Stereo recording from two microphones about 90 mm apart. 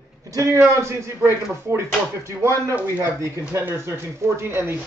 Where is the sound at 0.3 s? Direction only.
35° right (ahead or behind).